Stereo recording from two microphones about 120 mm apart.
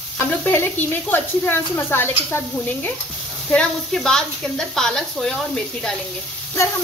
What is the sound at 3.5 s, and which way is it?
Speech, 5° left (ahead or behind).